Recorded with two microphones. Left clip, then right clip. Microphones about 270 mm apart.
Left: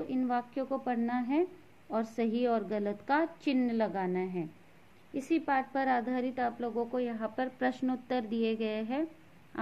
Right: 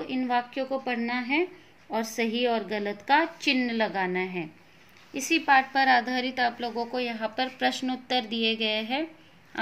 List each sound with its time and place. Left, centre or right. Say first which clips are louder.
0.0 s a woman's voice: right 5 dB; centre
6.7 s speech: right 3 dB; centre
7.0 s a woman's voice: right 5 dB; centre